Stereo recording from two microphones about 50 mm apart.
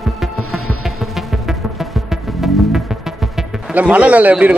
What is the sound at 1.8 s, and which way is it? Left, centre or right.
Music, centre.